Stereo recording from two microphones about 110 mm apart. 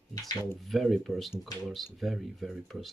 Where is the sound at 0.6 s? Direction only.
Centre (ahead or behind).